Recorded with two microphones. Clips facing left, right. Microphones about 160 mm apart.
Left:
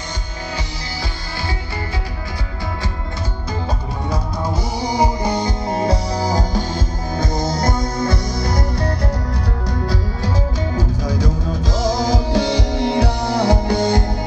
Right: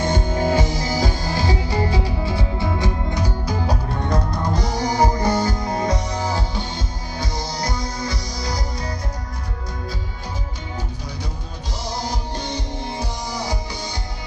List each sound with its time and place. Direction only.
0.0 s music: 50° right (ahead or behind)
4.1 s music: 10° left (ahead or behind); by 6.6 s 40° left (ahead or behind)
7.2 s music: 50° left (ahead or behind)
11.8 s music: 90° left; by 14.0 s 55° left (ahead or behind)